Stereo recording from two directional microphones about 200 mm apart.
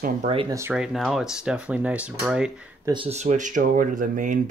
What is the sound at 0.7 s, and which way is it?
Speech, centre (ahead or behind).